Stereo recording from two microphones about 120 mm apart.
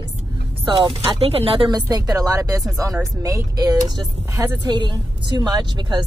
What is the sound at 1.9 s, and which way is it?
A woman's voice, 30° right (ahead or behind).